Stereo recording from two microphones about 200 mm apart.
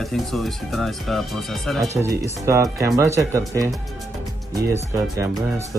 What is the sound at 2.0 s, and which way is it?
Speech, 15° right (ahead or behind).